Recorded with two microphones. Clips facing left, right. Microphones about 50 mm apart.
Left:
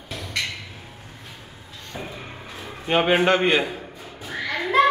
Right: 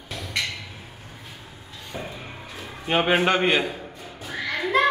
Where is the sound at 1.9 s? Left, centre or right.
Centre.